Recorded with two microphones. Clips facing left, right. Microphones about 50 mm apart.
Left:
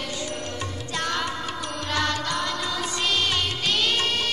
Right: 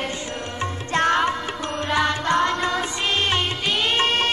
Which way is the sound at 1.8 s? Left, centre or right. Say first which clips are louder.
Right 5 dB; right.